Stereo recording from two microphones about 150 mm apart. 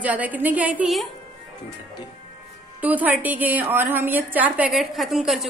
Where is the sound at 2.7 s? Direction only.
10° right (ahead or behind).